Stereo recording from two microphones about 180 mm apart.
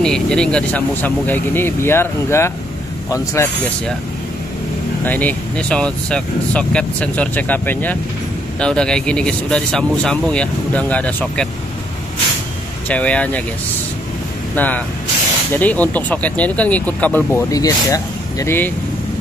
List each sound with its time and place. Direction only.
0.0 s speech: 5° left (ahead or behind)
5.0 s speech: 10° left (ahead or behind)
12.8 s speech: 5° left (ahead or behind)
14.5 s speech: 10° left (ahead or behind)